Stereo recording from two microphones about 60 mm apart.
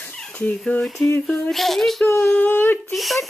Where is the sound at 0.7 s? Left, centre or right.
Left.